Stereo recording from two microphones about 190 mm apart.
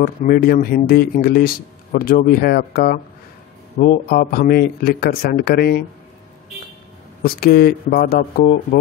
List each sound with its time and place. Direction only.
0.0 s speech: 45° left (ahead or behind)
7.2 s speech: 55° left (ahead or behind)